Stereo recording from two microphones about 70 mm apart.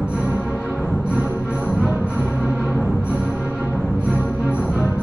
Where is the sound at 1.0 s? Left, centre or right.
Centre.